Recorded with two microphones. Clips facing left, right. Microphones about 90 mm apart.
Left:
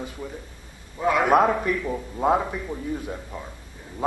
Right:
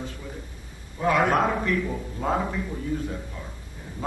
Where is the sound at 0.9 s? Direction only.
10° left (ahead or behind).